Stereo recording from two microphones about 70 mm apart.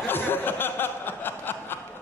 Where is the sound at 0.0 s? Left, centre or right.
Left.